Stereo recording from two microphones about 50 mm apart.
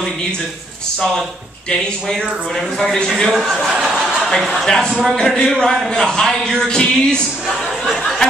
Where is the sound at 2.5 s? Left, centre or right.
Centre.